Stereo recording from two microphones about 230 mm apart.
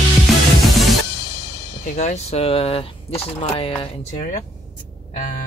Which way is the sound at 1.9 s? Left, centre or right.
Left.